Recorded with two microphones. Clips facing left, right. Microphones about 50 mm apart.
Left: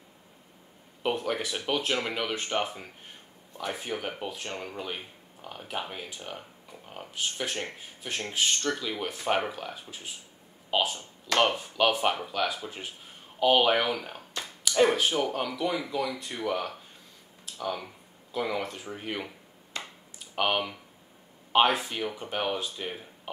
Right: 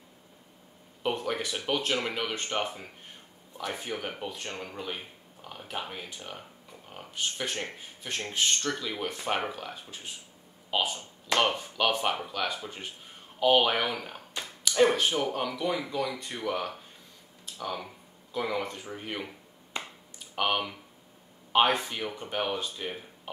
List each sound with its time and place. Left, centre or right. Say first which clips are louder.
1.0 s speech: left 1 dB; centre
19.7 s finger snapping: right 1 dB; right
20.3 s speech: left 1 dB; centre